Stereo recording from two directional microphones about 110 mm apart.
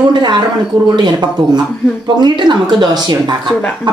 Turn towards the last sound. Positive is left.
turn(degrees=-40)  # may be behind; listen again after turning